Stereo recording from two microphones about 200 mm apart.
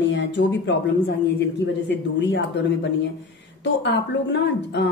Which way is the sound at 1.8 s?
60° left (ahead or behind).